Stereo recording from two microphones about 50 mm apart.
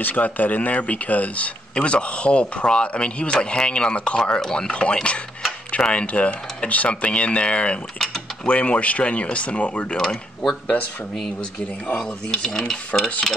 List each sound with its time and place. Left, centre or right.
0.0 s speech: left
9.9 s speech: centre
12.0 s speech: centre